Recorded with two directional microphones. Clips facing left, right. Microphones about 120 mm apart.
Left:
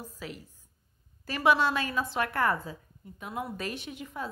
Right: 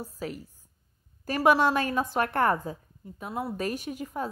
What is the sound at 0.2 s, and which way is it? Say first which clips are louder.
A woman's voice: right 6 dB; 40° right (ahead or behind).